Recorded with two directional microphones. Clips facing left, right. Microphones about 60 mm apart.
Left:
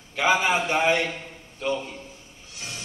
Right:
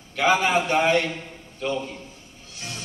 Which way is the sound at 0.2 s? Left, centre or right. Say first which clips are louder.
Right 1 dB; centre.